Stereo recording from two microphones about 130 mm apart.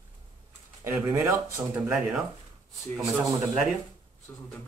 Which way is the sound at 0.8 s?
15° right (ahead or behind).